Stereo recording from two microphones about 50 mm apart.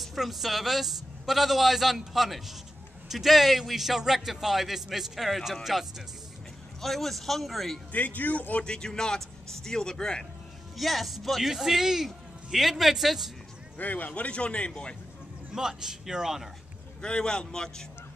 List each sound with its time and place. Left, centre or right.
0.0 s a man's voice: centre
7.9 s speech: left
8.6 s a man's voice: centre
10.8 s a man's voice: centre
13.7 s speech: left
15.5 s a man's voice: centre
17.0 s a man's voice: centre